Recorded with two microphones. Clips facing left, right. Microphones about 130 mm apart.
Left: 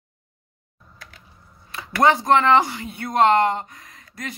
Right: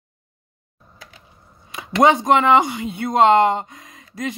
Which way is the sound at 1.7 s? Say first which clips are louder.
Right 3 dB; 20° right (ahead or behind).